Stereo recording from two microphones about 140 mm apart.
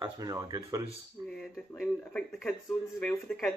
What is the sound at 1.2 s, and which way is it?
Speech, 5° left (ahead or behind).